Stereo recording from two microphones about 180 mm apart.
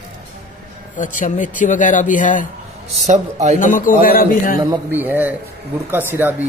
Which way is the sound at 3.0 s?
40° right (ahead or behind).